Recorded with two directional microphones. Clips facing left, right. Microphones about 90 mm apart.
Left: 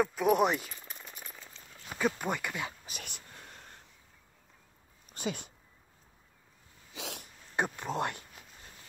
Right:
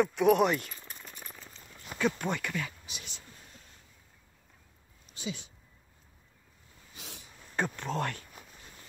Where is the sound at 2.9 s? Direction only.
55° left (ahead or behind).